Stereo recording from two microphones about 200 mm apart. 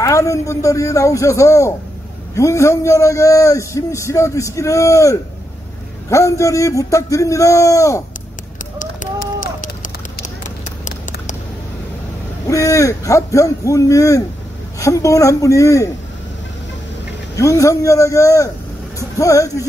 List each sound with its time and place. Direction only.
0.0 s a man's voice: 15° left (ahead or behind)
8.7 s a sound: 40° left (ahead or behind)
12.4 s a man's voice: 15° left (ahead or behind)
17.4 s a man's voice: 15° left (ahead or behind)